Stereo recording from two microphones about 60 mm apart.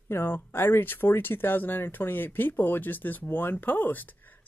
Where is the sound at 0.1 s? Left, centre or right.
Left.